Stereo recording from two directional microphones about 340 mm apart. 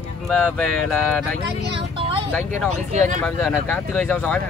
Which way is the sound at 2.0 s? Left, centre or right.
Centre.